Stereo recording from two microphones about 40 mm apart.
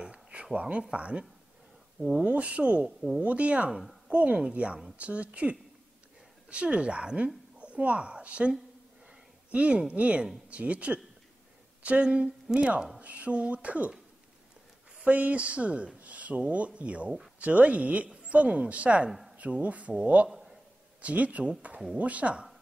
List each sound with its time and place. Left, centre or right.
0.0 s a sound: right
0.6 s speech: right
2.0 s speech: centre
2.2 s a woman's voice: right
15.0 s speech: right
19.0 s speech: centre
19.6 s speech: right
20.2 s a sound: centre
21.0 s speech: right